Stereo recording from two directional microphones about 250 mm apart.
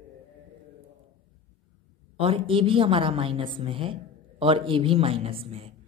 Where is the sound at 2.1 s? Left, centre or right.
Right.